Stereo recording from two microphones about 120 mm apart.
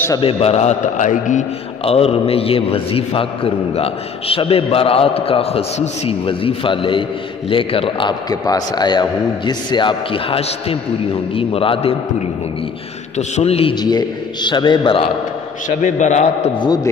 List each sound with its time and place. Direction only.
0.2 s a man's voice: 55° left (ahead or behind); by 1.4 s 90° left
1.9 s a man's voice: 55° left (ahead or behind)
13.4 s a man's voice: 55° left (ahead or behind)
13.7 s a man's voice: 35° left (ahead or behind)
15.8 s a man's voice: 80° left
16.5 s a man's voice: 35° left (ahead or behind)